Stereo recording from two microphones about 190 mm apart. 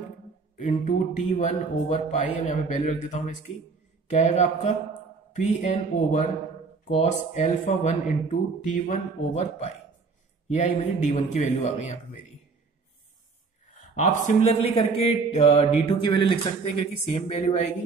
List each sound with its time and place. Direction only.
0.7 s speech: 40° left (ahead or behind)
14.2 s speech: 35° left (ahead or behind)